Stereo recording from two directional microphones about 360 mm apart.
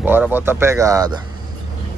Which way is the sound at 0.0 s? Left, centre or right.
Centre.